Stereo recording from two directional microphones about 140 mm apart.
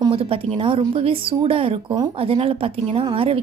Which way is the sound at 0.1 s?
40° right (ahead or behind).